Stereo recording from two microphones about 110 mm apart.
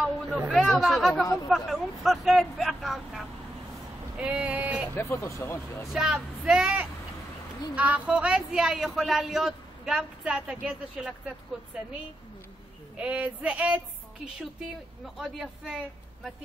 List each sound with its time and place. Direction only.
0.5 s speech: centre (ahead or behind)
4.2 s a sound: 10° right (ahead or behind)
4.9 s speech: 25° left (ahead or behind)
5.9 s speech: 5° right (ahead or behind)
12.9 s speech: 10° right (ahead or behind)
15.1 s speech: 5° right (ahead or behind)